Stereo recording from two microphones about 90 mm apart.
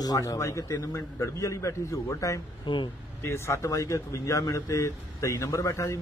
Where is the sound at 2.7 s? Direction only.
65° left (ahead or behind).